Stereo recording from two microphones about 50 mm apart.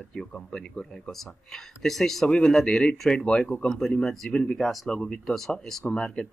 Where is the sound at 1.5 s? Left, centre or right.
Centre.